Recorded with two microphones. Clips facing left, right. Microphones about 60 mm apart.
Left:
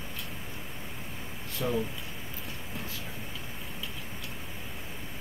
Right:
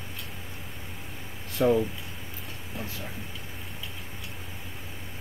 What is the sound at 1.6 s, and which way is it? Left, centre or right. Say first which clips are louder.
Speech: right 9 dB; right.